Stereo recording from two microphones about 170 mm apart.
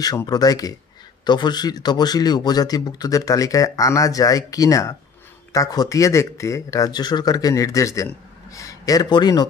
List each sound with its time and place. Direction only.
0.0 s speech: 20° left (ahead or behind)